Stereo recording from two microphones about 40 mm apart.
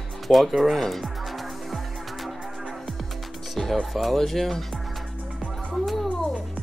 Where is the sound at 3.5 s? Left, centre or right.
Centre.